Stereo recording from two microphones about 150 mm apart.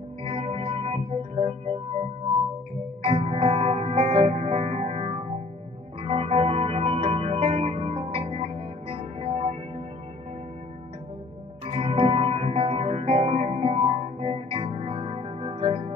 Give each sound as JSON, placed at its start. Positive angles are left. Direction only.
{"t": 0.2, "sound": "music", "side_deg": -40}
{"t": 3.0, "sound": "music", "side_deg": -40}
{"t": 11.6, "sound": "music", "side_deg": -40}